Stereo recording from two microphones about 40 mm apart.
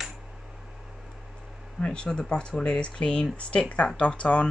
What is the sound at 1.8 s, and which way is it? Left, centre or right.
Speech, left.